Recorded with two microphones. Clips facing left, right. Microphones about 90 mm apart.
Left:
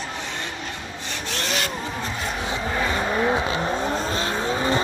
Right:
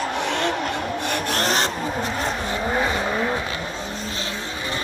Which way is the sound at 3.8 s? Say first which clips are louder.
Left 6 dB; 40° left (ahead or behind).